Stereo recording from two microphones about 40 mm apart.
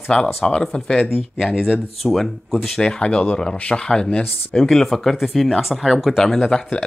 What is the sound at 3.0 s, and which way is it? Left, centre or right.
Speech, left.